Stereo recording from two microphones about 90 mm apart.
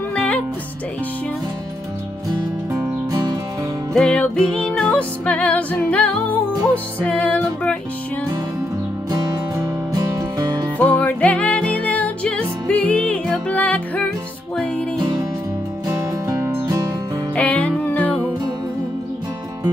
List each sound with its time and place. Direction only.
3.9 s music: 10° left (ahead or behind)
10.8 s music: 20° left (ahead or behind)
16.3 s music: 35° right (ahead or behind)
17.4 s music: 15° left (ahead or behind)